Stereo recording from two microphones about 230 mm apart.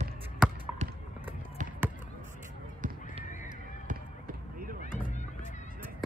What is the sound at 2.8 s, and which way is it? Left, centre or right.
Neigh, right.